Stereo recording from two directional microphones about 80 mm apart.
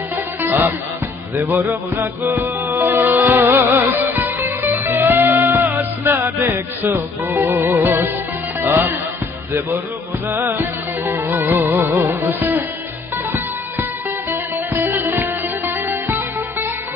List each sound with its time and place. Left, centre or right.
0.4 s music: right
8.5 s speech: right
10.3 s music: right
14.3 s music: right
14.9 s music: right